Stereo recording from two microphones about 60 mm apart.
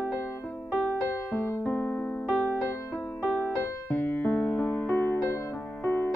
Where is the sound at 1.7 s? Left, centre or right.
Left.